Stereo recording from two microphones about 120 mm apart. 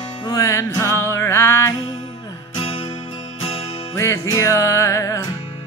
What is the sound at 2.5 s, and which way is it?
Music, 50° left (ahead or behind).